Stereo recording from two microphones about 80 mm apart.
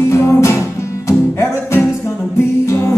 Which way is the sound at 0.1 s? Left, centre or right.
Left.